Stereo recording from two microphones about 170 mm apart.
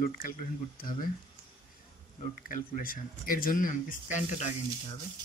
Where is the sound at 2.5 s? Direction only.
55° left (ahead or behind).